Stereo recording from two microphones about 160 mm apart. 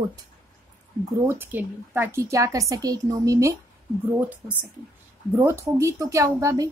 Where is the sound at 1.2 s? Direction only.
15° right (ahead or behind).